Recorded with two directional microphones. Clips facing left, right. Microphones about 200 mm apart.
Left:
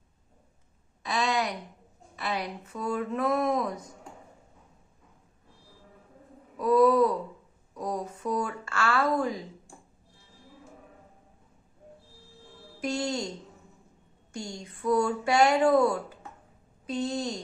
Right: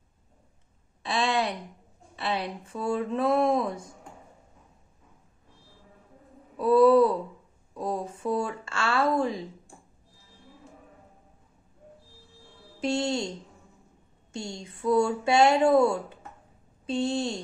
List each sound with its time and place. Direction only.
1.0 s a sound: 30° right (ahead or behind)
2.1 s speech: 30° right (ahead or behind)
6.5 s speech: 30° right (ahead or behind)
7.7 s a sound: 30° right (ahead or behind)
12.8 s speech: 25° right (ahead or behind)
14.3 s speech: 25° right (ahead or behind)